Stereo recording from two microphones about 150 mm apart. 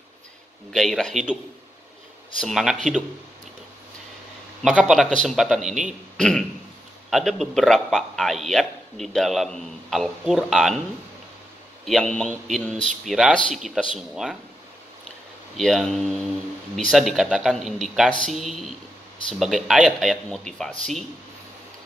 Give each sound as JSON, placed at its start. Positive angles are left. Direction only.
{"t": 0.7, "sound": "a man's voice", "side_deg": 0}
{"t": 2.4, "sound": "a man's voice", "side_deg": 0}
{"t": 4.6, "sound": "a man's voice", "side_deg": -5}
{"t": 11.8, "sound": "a man's voice", "side_deg": 0}
{"t": 15.5, "sound": "a man's voice", "side_deg": 0}